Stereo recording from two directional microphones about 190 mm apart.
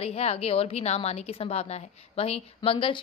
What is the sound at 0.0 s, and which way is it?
A woman's voice, 35° left (ahead or behind).